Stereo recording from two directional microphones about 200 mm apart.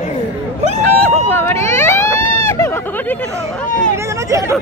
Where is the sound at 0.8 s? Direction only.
10° left (ahead or behind).